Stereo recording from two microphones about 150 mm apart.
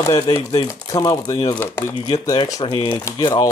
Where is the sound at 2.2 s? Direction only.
25° left (ahead or behind).